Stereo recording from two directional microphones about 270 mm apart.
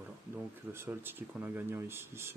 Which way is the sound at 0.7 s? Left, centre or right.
Centre.